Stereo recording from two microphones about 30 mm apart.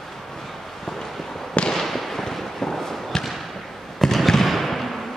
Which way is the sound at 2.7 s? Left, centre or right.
Centre.